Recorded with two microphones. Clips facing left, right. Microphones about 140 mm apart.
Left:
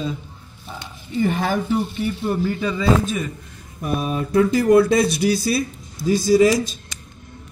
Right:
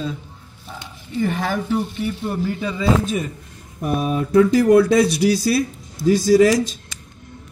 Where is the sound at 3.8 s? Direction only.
65° right (ahead or behind).